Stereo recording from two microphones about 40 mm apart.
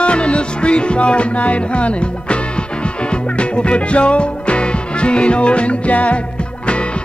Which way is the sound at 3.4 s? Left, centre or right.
Left.